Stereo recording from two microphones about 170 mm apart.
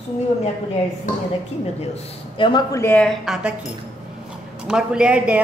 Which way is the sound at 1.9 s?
30° left (ahead or behind).